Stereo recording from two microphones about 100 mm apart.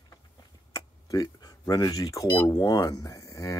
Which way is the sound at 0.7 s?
35° left (ahead or behind).